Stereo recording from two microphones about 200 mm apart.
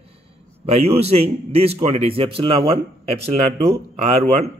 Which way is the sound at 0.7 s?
30° right (ahead or behind).